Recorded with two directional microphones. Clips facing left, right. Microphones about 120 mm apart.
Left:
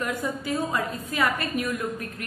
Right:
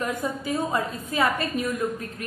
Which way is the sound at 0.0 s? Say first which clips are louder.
Right 1 dB; 25° right (ahead or behind).